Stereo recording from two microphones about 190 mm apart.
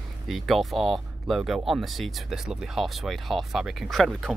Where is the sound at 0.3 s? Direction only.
Centre (ahead or behind).